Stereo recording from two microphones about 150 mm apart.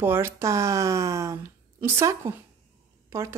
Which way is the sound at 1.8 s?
15° right (ahead or behind).